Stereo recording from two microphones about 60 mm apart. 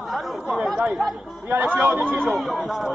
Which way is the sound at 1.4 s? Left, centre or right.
Right.